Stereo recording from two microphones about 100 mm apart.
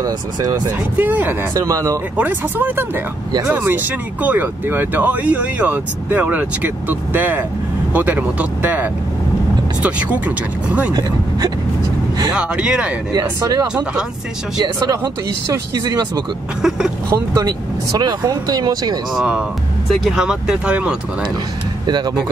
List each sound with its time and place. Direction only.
0.0 s speech: 40° right (ahead or behind)
0.9 s speech: 20° right (ahead or behind)
1.5 s speech: 30° right (ahead or behind)
2.1 s speech: 20° right (ahead or behind)
10.9 s speech: 40° right (ahead or behind)
12.3 s speech: 10° right (ahead or behind)
13.1 s speech: 45° right (ahead or behind)
16.6 s speech: 5° right (ahead or behind)
17.3 s speech: 40° right (ahead or behind)
19.1 s speech: 5° right (ahead or behind)
21.8 s speech: 45° right (ahead or behind)